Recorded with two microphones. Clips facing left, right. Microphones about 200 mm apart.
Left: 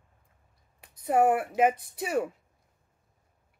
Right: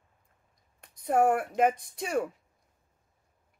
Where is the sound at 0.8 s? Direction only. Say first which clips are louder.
Left 1 dB; 5° left (ahead or behind).